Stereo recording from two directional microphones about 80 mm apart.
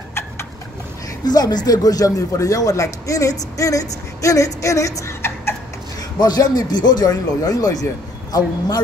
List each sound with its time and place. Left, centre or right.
1.2 s speech: left
6.1 s speech: left